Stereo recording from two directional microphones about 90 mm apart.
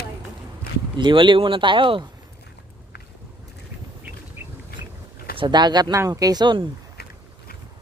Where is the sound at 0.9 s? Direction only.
60° right (ahead or behind).